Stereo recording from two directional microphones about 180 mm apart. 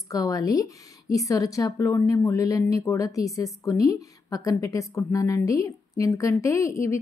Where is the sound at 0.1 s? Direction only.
20° left (ahead or behind).